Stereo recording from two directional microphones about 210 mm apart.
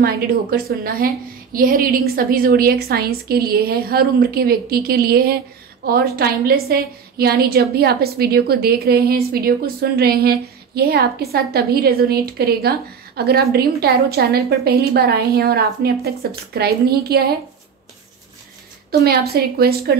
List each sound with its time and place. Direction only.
0.0 s a woman's voice: 45° right (ahead or behind)
18.9 s a woman's voice: 45° right (ahead or behind)